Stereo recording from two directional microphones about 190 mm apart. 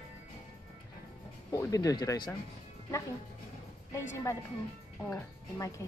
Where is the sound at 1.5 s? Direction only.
20° left (ahead or behind).